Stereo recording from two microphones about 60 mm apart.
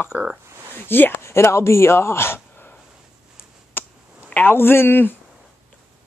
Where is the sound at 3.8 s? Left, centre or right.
Left.